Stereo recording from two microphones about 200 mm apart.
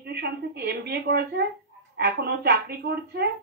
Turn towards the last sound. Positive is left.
turn(degrees=-55)  # may be behind; listen again after turning